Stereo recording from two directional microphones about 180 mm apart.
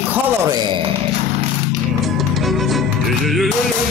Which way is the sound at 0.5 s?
20° right (ahead or behind).